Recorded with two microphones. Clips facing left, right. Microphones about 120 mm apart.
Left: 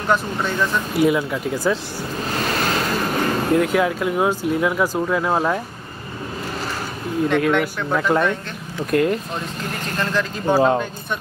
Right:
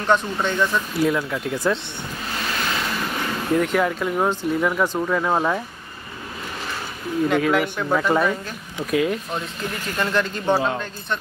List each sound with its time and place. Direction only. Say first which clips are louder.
0.0 s speech: even; 5° left (ahead or behind)
2.3 s waves: left 4 dB; 45° left (ahead or behind)
3.5 s speech: even; 5° left (ahead or behind)
7.2 s speech: left 1 dB; centre (ahead or behind)